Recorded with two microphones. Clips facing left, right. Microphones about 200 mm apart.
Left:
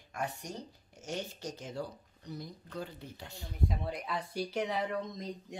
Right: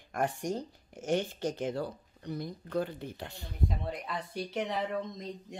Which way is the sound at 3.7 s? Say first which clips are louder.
Even; centre (ahead or behind).